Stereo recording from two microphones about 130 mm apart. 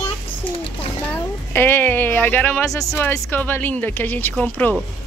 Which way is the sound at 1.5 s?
15° left (ahead or behind).